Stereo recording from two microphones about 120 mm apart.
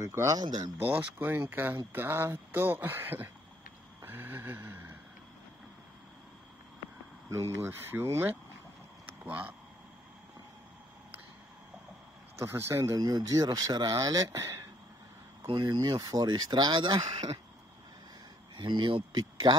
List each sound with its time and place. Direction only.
0.0 s speech: 25° right (ahead or behind)
0.7 s speech: 15° right (ahead or behind)
4.0 s a sound: 15° right (ahead or behind)
7.2 s speech: 20° right (ahead or behind)
12.4 s speech: 20° right (ahead or behind)
15.4 s speech: 40° right (ahead or behind)
18.6 s speech: 40° right (ahead or behind)